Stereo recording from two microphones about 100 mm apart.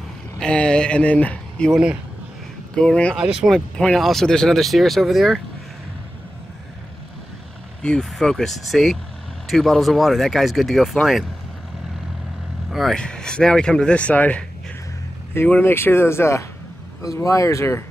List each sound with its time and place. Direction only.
0.4 s speech: 10° left (ahead or behind)
1.7 s speech: 10° right (ahead or behind)
2.7 s speech: 10° left (ahead or behind)
3.2 s speech: centre (ahead or behind)
7.8 s speech: 5° left (ahead or behind)
12.7 s speech: 5° left (ahead or behind); by 17.8 s 30° left (ahead or behind)